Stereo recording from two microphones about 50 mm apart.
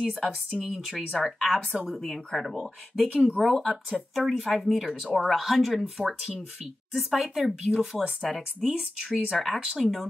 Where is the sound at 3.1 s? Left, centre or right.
Right.